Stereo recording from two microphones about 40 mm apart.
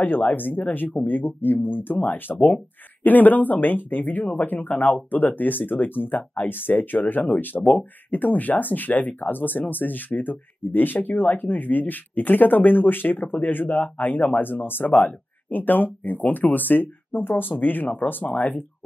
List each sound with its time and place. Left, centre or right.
0.0 s speech: left